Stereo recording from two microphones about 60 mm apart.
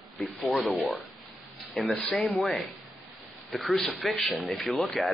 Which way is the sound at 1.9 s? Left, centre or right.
Centre.